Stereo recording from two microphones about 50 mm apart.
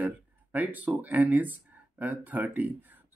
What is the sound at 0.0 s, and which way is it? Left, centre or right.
Speech, right.